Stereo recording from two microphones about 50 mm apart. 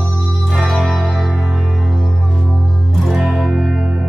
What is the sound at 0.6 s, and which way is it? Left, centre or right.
Music, centre.